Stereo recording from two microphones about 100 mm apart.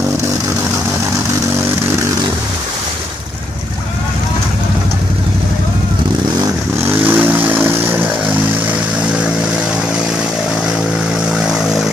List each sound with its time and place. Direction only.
7.1 s vehicle: 15° right (ahead or behind)
11.2 s vehicle: 5° right (ahead or behind)